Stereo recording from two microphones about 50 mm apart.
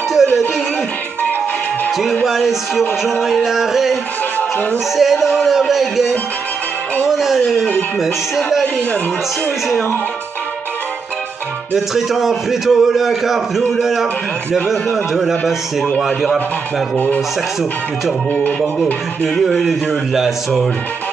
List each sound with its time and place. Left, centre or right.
0.2 s music: centre
2.2 s speech: centre
4.9 s music: centre
8.0 s a man's voice: centre
11.7 s a man's voice: centre
16.9 s speech: left
19.2 s a man's voice: centre